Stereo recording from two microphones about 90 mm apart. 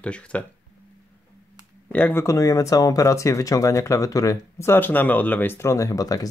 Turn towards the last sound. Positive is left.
turn(degrees=40)  # may be behind; listen again after turning